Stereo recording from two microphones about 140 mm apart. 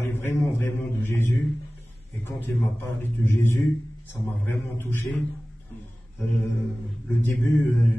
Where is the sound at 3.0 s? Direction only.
15° left (ahead or behind).